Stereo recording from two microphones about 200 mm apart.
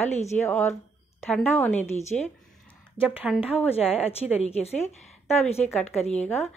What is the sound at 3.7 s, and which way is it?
A woman's voice, 30° left (ahead or behind).